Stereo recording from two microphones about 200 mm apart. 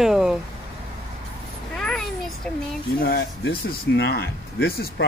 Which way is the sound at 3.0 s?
50° left (ahead or behind).